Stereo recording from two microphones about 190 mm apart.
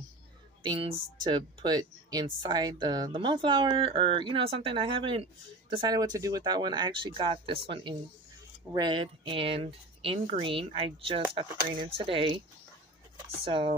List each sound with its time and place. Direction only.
0.6 s speech: 25° right (ahead or behind)
13.4 s speech: 30° right (ahead or behind)